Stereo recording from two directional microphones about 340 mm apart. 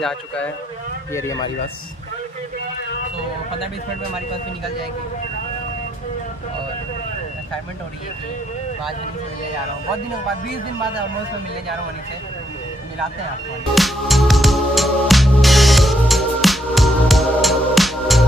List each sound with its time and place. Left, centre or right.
1.1 s speech: centre
13.7 s music: centre